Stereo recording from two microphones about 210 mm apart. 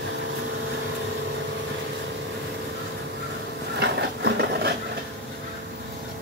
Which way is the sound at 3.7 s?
50° right (ahead or behind).